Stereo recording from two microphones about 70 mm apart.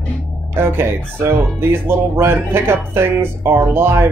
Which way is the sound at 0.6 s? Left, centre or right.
Right.